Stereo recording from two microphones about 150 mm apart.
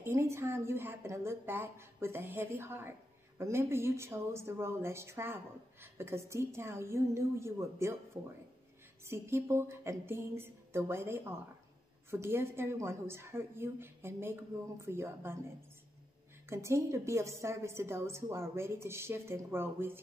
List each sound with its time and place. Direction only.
0.0 s a woman's voice: 20° right (ahead or behind)
16.4 s a woman's voice: 20° right (ahead or behind)